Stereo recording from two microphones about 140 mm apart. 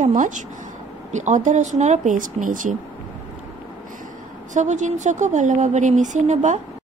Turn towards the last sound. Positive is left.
turn(degrees=-55)  # may be behind; listen again after turning